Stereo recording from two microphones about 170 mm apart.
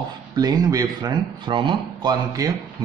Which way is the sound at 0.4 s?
25° right (ahead or behind).